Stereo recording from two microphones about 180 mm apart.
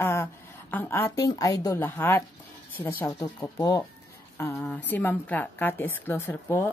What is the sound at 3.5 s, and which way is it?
Speech, 20° left (ahead or behind).